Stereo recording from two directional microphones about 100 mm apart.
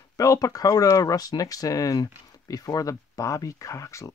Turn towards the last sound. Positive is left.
turn(degrees=30)  # may be behind; listen again after turning